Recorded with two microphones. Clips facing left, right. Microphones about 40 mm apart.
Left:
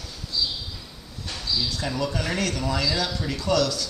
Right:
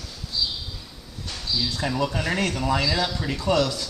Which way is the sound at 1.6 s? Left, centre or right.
Right.